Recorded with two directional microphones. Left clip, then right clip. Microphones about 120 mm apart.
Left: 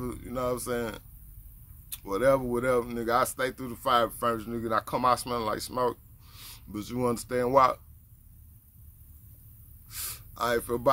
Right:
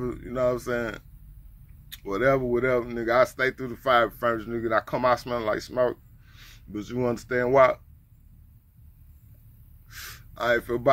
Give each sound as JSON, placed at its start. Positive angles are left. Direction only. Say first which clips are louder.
{"t": 0.0, "sound": "speech", "louder": "right 6 dB", "side_deg": 25}
{"t": 2.0, "sound": "speech", "louder": "right 2 dB", "side_deg": 20}
{"t": 9.8, "sound": "gasp", "louder": "even", "side_deg": 25}